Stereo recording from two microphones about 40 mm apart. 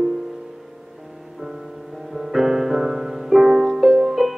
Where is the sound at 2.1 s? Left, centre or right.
Centre.